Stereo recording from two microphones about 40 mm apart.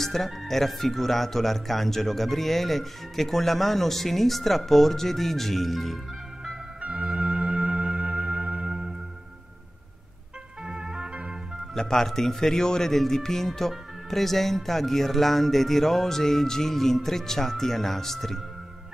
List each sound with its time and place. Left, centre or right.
0.0 s speech: centre
6.8 s music: right
8.6 s music: centre
10.6 s organ: centre
11.7 s a man's voice: centre